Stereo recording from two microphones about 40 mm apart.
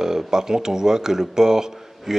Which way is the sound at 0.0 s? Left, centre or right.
Centre.